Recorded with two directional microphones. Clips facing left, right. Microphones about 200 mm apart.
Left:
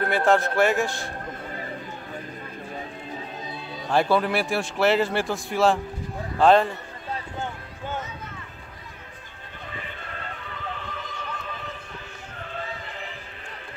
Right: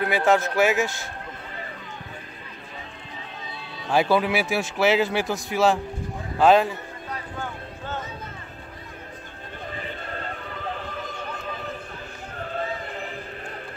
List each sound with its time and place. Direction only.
0.0 s speech: centre (ahead or behind)
3.9 s speech: 5° right (ahead or behind)
9.7 s run: 40° right (ahead or behind)
12.4 s a sound: 40° right (ahead or behind)